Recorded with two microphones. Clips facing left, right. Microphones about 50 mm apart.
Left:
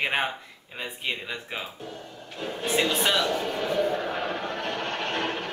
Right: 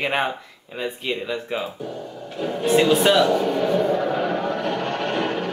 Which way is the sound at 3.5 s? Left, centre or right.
Right.